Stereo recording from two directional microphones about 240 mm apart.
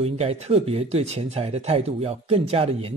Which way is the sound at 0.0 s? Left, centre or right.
Right.